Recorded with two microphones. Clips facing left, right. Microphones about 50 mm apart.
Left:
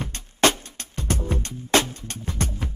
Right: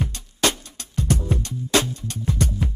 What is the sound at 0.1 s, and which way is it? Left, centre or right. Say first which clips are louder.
Music: left 3 dB; left.